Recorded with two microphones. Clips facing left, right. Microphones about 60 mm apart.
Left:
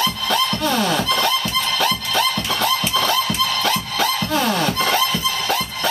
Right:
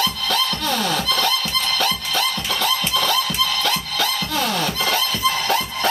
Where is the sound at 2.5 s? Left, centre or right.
Left.